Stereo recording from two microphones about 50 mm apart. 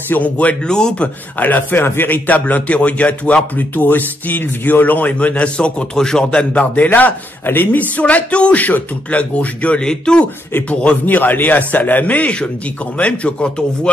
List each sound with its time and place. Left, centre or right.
0.1 s speech: left
0.7 s a man's voice: centre
1.4 s speech: left
3.5 s speech: left
5.9 s a man's voice: centre
6.3 s speech: left
7.4 s a woman's voice: left
7.9 s speech: left
10.7 s speech: left